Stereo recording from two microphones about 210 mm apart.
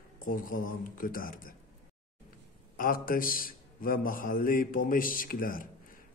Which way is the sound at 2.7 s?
40° left (ahead or behind).